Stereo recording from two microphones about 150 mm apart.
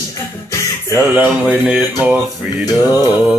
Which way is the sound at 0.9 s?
15° right (ahead or behind).